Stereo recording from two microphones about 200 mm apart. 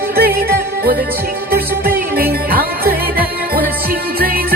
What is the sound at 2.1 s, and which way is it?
Music, 50° right (ahead or behind).